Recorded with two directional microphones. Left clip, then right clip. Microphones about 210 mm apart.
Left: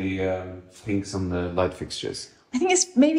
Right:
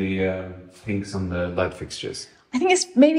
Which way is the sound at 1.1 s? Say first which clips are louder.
Right 1 dB; 45° left (ahead or behind).